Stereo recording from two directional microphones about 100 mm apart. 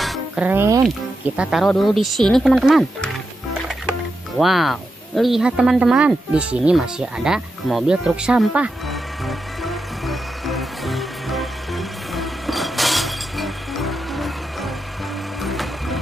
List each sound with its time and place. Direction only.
0.4 s speech: 20° right (ahead or behind)
1.6 s speech: centre (ahead or behind)
4.4 s speech: centre (ahead or behind)
9.2 s music: centre (ahead or behind)
15.4 s vehicle: centre (ahead or behind)